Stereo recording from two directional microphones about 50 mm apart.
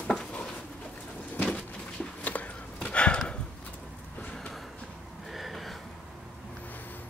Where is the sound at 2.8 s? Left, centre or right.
Left.